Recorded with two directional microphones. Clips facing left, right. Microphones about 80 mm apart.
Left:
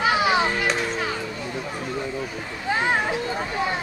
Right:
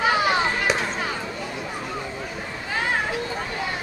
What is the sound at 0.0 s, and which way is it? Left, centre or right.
Children playing, centre.